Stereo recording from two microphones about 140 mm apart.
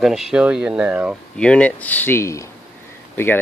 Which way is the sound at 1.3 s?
5° left (ahead or behind).